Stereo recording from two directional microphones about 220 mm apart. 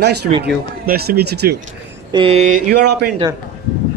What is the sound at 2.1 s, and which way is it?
Mantra, 25° right (ahead or behind).